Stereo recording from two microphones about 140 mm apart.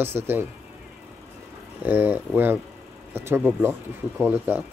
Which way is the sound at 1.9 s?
15° right (ahead or behind).